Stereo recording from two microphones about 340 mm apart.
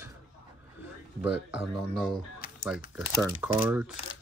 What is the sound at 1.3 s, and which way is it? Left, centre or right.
Speech, left.